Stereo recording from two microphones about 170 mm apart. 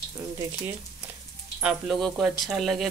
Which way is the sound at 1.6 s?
5° right (ahead or behind).